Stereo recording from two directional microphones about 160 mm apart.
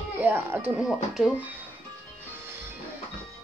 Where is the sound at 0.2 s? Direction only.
15° right (ahead or behind).